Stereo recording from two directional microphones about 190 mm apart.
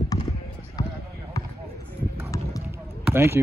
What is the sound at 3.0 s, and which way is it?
Speech, 10° right (ahead or behind).